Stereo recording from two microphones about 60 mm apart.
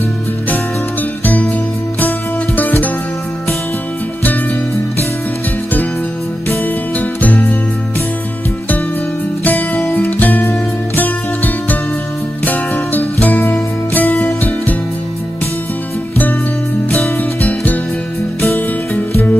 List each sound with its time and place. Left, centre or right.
1.2 s music: left
7.0 s music: left
9.4 s music: left
17.2 s music: left